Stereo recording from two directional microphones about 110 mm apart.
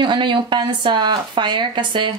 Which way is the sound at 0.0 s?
45° right (ahead or behind).